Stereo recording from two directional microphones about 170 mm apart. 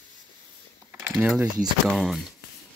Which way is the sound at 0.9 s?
10° right (ahead or behind).